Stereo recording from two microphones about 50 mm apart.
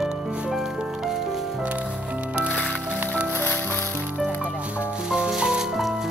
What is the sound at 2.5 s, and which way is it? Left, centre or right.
Music, centre.